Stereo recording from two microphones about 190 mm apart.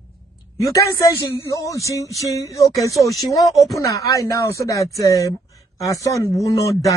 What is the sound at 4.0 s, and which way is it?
Speech, 15° left (ahead or behind).